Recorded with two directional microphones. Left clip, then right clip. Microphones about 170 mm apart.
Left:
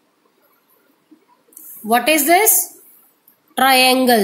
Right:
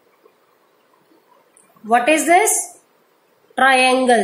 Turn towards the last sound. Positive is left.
turn(degrees=65)  # may be behind; listen again after turning